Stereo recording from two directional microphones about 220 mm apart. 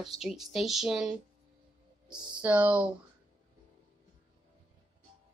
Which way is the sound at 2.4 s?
5° right (ahead or behind).